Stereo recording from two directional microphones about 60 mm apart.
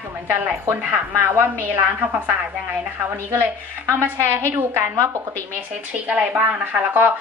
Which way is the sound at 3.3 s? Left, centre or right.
Right.